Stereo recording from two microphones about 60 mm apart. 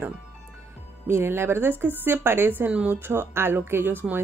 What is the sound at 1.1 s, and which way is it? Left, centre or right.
Speech, right.